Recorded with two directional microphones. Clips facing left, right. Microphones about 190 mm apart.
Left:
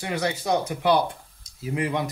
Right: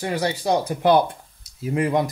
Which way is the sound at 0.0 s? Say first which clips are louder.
Right 3 dB; 35° right (ahead or behind).